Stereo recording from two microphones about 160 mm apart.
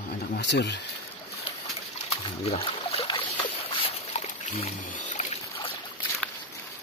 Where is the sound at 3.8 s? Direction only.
45° left (ahead or behind).